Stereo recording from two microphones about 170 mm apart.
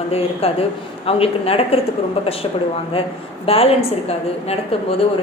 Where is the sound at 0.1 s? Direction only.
35° left (ahead or behind).